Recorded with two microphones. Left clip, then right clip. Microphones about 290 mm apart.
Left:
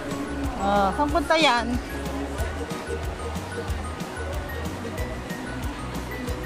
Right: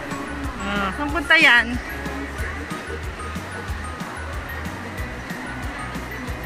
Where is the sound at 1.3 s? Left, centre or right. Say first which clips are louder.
Right 7 dB; centre.